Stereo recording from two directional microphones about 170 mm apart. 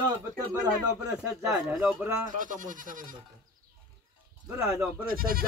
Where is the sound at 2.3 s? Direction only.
50° right (ahead or behind).